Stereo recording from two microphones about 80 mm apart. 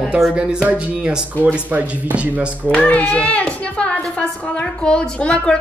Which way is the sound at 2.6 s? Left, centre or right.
Centre.